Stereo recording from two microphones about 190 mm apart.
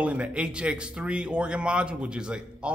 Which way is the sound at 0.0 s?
5° right (ahead or behind).